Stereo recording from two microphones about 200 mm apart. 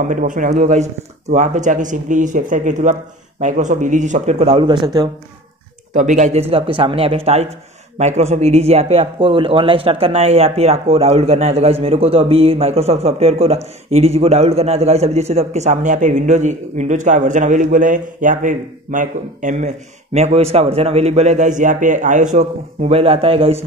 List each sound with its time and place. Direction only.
0.1 s a man's voice: 40° right (ahead or behind); by 5.1 s 20° right (ahead or behind)
5.9 s a man's voice: 40° right (ahead or behind)
6.5 s a man's voice: 30° right (ahead or behind)